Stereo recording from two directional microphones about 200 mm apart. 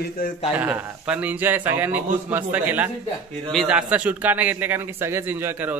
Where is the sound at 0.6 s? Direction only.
10° right (ahead or behind).